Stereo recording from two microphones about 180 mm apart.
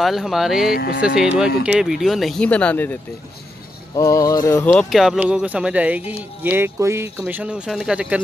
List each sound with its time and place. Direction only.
0.0 s speech: centre (ahead or behind)
0.7 s speech: 55° left (ahead or behind)
1.0 s speech: 5° right (ahead or behind)
3.9 s a sound: 15° left (ahead or behind)
4.8 s speech: centre (ahead or behind)